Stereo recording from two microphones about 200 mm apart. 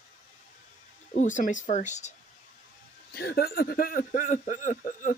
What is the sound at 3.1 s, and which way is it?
A man's voice, 50° left (ahead or behind).